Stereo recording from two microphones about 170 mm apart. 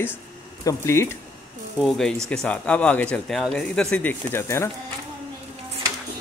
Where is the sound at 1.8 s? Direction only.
Centre (ahead or behind).